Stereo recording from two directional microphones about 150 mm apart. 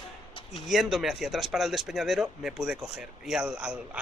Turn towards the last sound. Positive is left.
turn(degrees=-5)  # may be behind; listen again after turning